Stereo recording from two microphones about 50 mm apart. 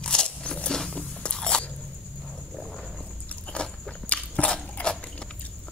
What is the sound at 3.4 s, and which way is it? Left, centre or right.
Biting, centre.